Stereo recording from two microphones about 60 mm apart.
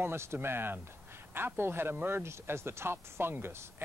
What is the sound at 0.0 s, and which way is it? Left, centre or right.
Speech, right.